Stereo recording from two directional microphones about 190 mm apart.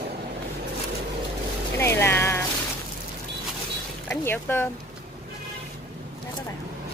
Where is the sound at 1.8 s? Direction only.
15° left (ahead or behind).